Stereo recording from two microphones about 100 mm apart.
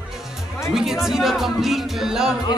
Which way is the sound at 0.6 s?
5° right (ahead or behind).